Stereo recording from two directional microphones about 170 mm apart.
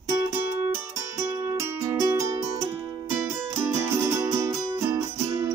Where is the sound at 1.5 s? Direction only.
15° right (ahead or behind).